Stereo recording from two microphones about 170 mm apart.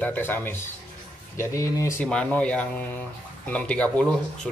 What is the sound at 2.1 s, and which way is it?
A man's voice, 5° left (ahead or behind).